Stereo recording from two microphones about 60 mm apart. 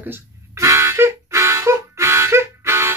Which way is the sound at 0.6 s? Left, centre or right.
Right.